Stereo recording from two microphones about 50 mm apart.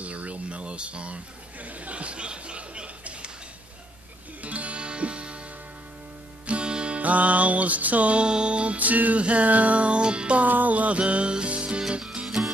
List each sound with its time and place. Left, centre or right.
0.0 s a sound: right
4.4 s music: right
6.4 s music: right
8.7 s music: right
10.4 s music: right